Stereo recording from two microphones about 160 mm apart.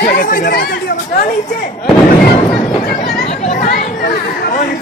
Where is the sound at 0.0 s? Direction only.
65° left (ahead or behind); by 1.8 s 50° left (ahead or behind).